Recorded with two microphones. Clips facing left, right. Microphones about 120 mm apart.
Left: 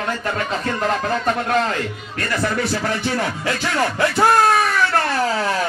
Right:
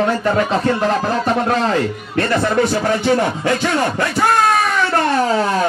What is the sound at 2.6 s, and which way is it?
Speech, 20° right (ahead or behind).